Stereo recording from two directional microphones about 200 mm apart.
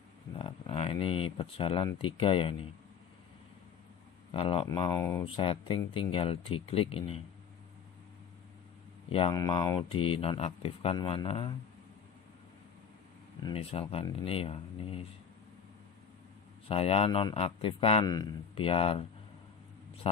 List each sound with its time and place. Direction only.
0.4 s speech: 30° left (ahead or behind)
4.3 s speech: 25° left (ahead or behind)
5.2 s speech: 25° left (ahead or behind)
9.1 s speech: 25° left (ahead or behind)
13.5 s speech: 30° left (ahead or behind)
16.6 s speech: 30° left (ahead or behind)